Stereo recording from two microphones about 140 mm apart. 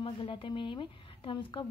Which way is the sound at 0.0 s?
40° left (ahead or behind).